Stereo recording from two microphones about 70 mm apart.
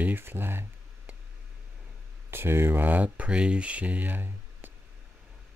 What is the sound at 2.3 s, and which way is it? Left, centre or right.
Speech, right.